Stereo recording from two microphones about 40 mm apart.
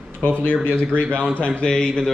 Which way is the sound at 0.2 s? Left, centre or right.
Left.